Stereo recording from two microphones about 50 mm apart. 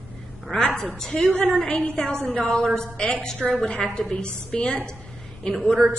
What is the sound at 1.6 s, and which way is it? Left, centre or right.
A woman's voice, left.